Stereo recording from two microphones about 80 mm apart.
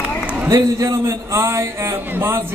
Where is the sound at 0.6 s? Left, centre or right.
Right.